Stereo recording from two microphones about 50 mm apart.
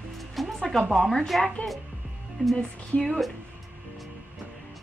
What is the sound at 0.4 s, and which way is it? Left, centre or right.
Music, centre.